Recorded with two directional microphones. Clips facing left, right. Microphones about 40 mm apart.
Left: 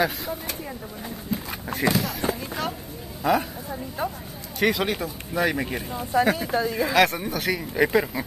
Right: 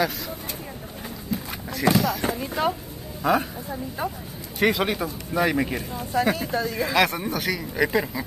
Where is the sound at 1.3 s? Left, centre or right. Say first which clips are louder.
Even; left.